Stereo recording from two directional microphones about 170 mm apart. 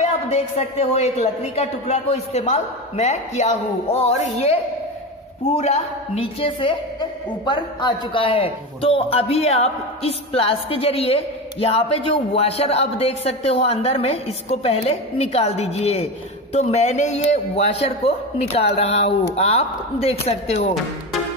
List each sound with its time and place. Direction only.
0.0 s a woman's voice: 40° left (ahead or behind)
5.6 s a woman's voice: 40° left (ahead or behind)